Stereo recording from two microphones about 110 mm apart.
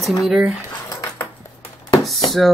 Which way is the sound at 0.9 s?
30° left (ahead or behind).